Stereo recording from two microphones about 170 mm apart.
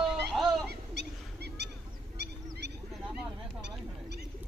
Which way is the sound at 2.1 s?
80° right.